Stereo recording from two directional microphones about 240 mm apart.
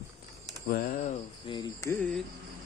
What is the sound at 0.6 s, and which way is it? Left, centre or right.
Speech, left.